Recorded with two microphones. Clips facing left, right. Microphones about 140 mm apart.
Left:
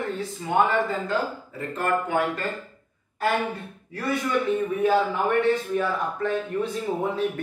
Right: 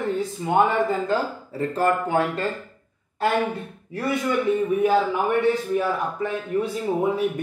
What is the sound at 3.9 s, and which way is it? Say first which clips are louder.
A man's voice: right 2 dB; 15° right (ahead or behind).